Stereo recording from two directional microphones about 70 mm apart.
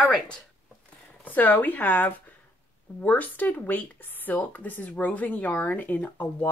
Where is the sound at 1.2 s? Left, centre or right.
Left.